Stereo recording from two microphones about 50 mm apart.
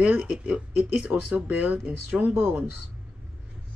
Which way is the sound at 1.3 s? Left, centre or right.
Right.